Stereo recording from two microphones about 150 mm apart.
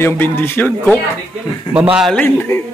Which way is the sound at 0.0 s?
15° left (ahead or behind).